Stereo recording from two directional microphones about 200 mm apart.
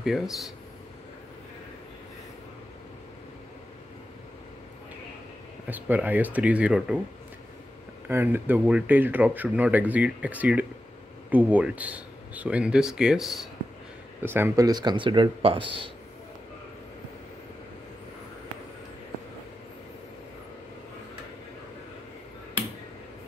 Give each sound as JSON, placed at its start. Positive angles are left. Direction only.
{"t": 0.0, "sound": "speech", "side_deg": 0}
{"t": 5.7, "sound": "speech", "side_deg": -10}
{"t": 8.1, "sound": "speech", "side_deg": -10}
{"t": 14.2, "sound": "speech", "side_deg": -10}